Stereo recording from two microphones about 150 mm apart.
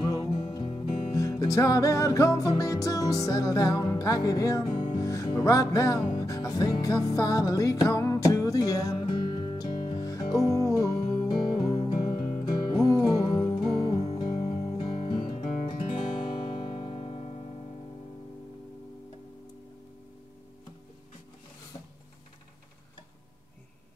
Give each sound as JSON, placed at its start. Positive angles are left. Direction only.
{"t": 1.1, "sound": "music", "side_deg": 20}
{"t": 12.6, "sound": "music", "side_deg": 25}
{"t": 14.5, "sound": "music", "side_deg": 40}